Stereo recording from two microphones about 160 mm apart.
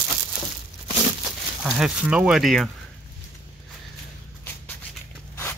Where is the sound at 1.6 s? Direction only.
5° right (ahead or behind).